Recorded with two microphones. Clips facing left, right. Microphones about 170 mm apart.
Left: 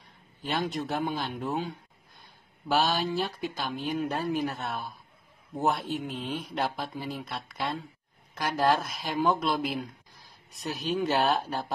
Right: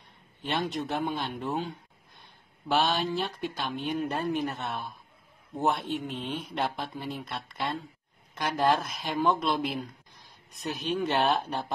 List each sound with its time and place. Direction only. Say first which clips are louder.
0.4 s speech: even; centre (ahead or behind)
2.7 s speech: even; centre (ahead or behind)